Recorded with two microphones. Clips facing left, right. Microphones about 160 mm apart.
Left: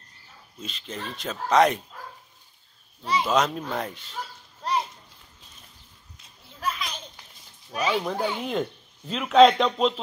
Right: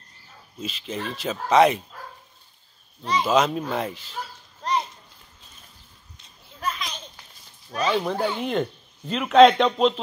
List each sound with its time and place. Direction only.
0.6 s a man's voice: 5° right (ahead or behind)
3.0 s a man's voice: 5° left (ahead or behind)
4.6 s children playing: 5° left (ahead or behind)
6.1 s a sound: 5° left (ahead or behind)
7.7 s speech: 10° left (ahead or behind)
8.0 s a man's voice: 5° right (ahead or behind)